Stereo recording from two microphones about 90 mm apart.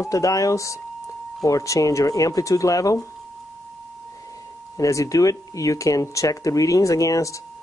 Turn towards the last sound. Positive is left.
turn(degrees=35)  # may be behind; listen again after turning